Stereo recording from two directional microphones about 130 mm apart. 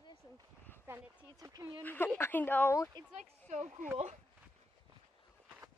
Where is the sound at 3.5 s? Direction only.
65° right (ahead or behind).